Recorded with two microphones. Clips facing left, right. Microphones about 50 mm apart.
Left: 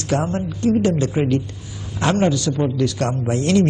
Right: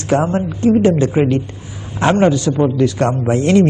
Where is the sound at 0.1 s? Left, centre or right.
Right.